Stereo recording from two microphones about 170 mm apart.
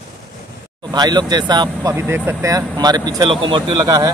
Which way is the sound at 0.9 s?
25° right (ahead or behind).